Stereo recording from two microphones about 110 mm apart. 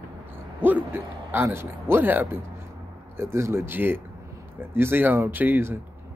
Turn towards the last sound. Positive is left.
turn(degrees=-20)  # may be behind; listen again after turning